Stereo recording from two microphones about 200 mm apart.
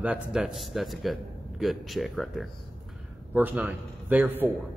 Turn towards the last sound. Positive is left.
turn(degrees=-10)  # may be behind; listen again after turning